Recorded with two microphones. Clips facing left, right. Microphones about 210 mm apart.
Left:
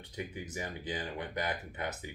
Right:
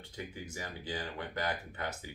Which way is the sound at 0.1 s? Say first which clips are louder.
Left 3 dB; 20° left (ahead or behind).